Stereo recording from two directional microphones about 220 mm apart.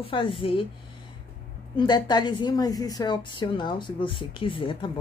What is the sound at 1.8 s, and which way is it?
A woman's voice, 20° left (ahead or behind).